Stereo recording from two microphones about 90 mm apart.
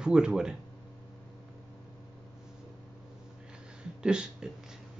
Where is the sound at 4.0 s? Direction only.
10° right (ahead or behind).